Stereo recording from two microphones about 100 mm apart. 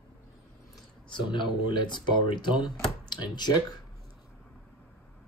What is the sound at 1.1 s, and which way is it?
Speech, 50° left (ahead or behind).